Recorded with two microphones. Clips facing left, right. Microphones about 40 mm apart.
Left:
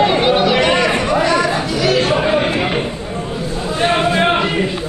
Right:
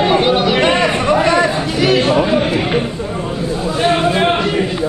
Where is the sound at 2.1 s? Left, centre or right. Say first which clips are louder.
Right 2 dB; centre.